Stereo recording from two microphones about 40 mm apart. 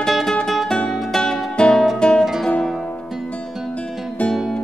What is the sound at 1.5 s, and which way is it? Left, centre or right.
Music, left.